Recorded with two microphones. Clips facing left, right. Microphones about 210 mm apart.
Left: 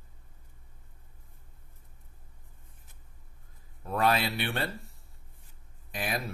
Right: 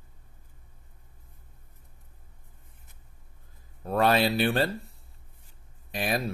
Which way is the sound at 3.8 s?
30° right (ahead or behind).